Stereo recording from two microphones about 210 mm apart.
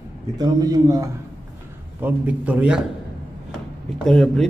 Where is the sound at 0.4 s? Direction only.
20° right (ahead or behind).